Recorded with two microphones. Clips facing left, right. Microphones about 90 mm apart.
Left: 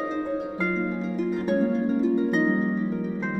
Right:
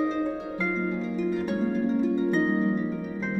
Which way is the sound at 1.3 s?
35° left (ahead or behind).